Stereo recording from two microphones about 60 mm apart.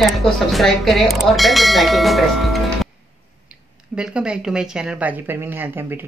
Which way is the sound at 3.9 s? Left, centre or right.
Centre.